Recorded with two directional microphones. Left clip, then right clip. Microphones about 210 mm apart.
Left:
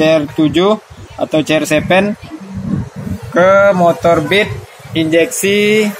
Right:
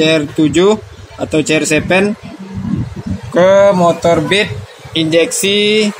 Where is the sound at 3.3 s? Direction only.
15° right (ahead or behind).